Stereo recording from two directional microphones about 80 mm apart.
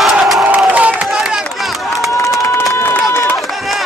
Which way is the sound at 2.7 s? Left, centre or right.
Left.